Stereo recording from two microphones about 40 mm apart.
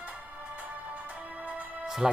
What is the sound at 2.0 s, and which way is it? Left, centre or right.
Speech, centre.